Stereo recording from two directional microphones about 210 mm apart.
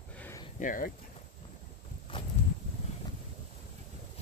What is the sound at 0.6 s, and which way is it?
Speech, 40° left (ahead or behind).